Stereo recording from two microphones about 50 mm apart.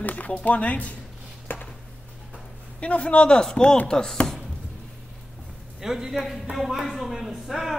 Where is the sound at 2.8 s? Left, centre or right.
Left.